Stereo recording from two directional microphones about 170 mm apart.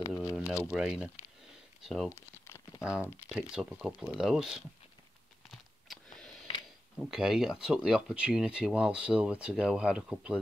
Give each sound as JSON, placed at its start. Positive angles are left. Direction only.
{"t": 0.2, "sound": "a sound", "side_deg": 20}
{"t": 0.7, "sound": "speech", "side_deg": -5}
{"t": 2.1, "sound": "crumpling", "side_deg": 15}
{"t": 2.8, "sound": "speech", "side_deg": -5}
{"t": 5.5, "sound": "a sound", "side_deg": 0}
{"t": 7.0, "sound": "speech", "side_deg": -5}